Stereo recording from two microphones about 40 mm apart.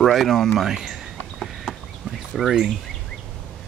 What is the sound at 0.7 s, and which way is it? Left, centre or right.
Speech, centre.